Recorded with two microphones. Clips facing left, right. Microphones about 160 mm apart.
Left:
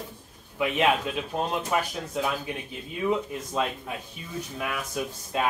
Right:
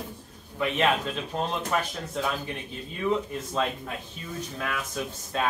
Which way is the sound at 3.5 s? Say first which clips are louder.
Even; 10° left (ahead or behind).